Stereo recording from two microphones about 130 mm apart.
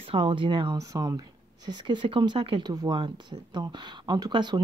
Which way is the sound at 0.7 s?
30° right (ahead or behind).